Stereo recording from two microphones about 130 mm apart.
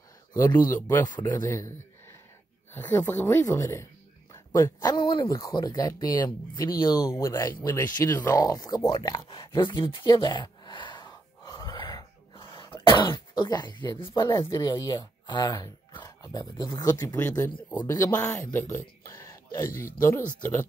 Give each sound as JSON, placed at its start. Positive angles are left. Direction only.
{"t": 0.3, "sound": "speech", "side_deg": 25}
{"t": 2.7, "sound": "speech", "side_deg": 20}
{"t": 17.1, "sound": "speech", "side_deg": 15}
{"t": 17.8, "sound": "speech", "side_deg": 25}